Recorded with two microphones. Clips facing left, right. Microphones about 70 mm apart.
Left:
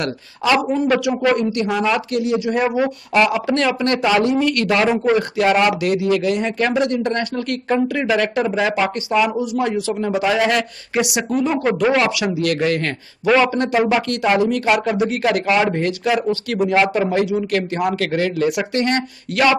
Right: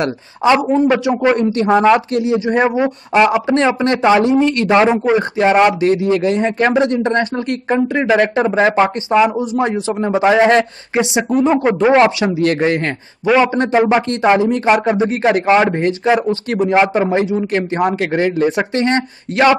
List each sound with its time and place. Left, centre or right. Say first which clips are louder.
0.0 s speech: right 6 dB; right